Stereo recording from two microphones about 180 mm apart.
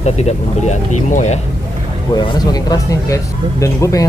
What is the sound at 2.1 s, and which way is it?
Speech, 25° left (ahead or behind).